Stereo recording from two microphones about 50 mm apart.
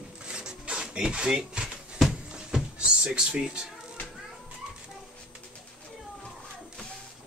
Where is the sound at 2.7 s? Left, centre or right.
Centre.